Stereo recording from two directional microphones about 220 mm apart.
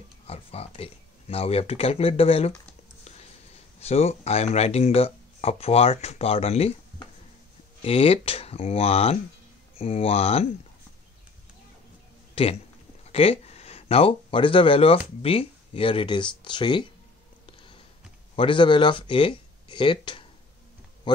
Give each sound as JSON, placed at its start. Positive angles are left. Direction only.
{"t": 0.3, "sound": "speech", "side_deg": 25}
{"t": 3.8, "sound": "speech", "side_deg": 30}
{"t": 7.8, "sound": "speech", "side_deg": 25}
{"t": 12.4, "sound": "speech", "side_deg": 25}
{"t": 17.5, "sound": "a sound", "side_deg": 25}
{"t": 18.3, "sound": "speech", "side_deg": 25}